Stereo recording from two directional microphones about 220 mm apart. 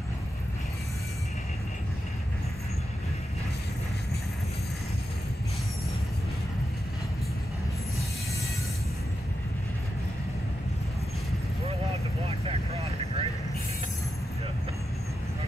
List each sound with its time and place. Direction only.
12.3 s vehicle: 25° right (ahead or behind)